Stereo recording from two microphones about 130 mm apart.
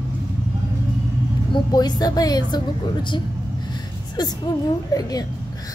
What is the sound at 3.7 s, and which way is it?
Gasp, 30° left (ahead or behind).